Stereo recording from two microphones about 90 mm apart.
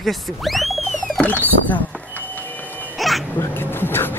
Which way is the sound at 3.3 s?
25° left (ahead or behind).